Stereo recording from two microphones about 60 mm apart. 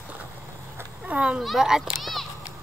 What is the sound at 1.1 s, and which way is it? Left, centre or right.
Speech, right.